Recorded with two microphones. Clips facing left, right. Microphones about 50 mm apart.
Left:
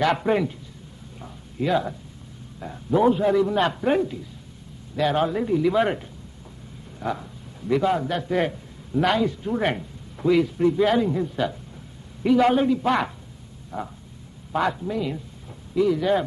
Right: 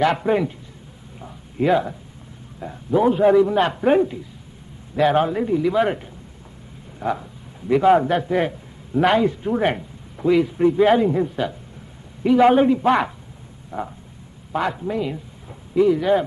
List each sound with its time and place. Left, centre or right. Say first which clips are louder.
0.0 s a man's voice: right 2 dB; centre
1.6 s a man's voice: right 5 dB; right
2.6 s a man's voice: right 2 dB; centre
3.1 s a man's voice: right 8 dB; right
5.6 s a man's voice: right 1 dB; centre
7.0 s a sound: right 4 dB; centre
7.8 s a man's voice: right 7 dB; right
8.3 s a man's voice: right 2 dB; centre
9.1 s a man's voice: right 4 dB; right
13.7 s a man's voice: right 3 dB; right